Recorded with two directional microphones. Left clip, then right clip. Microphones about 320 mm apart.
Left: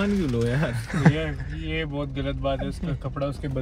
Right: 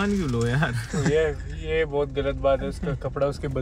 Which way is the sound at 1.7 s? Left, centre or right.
Right.